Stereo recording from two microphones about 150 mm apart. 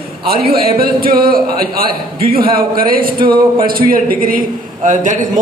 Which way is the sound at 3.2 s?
30° right (ahead or behind).